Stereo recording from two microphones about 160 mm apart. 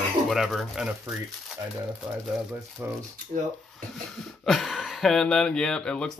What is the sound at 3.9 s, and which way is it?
Speech, centre (ahead or behind).